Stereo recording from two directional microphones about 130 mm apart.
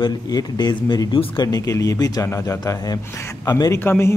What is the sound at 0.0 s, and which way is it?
Speech, 30° left (ahead or behind).